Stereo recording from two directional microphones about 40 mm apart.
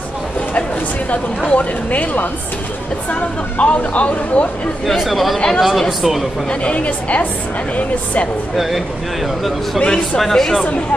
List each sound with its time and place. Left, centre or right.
1.5 s speech: left
4.8 s speech: centre
6.5 s speech: left
8.5 s speech: centre
9.8 s speech: left
10.1 s speech: centre